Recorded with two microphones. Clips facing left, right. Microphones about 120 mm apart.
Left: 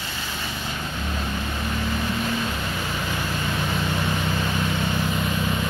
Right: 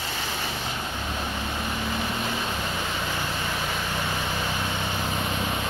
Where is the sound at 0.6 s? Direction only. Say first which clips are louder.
Left 1 dB; 15° right (ahead or behind).